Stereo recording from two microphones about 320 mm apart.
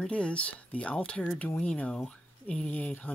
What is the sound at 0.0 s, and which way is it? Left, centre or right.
Speech, centre.